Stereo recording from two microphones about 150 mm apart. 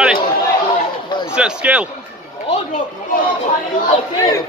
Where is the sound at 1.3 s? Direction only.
5° right (ahead or behind).